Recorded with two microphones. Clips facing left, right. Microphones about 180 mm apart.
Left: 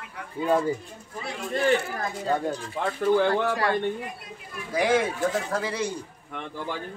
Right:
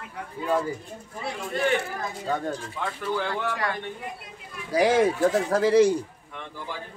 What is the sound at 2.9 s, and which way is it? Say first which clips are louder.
Speech: left 9 dB; 40° left (ahead or behind).